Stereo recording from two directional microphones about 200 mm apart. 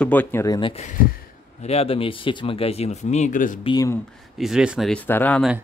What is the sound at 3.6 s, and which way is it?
Speech, 15° left (ahead or behind).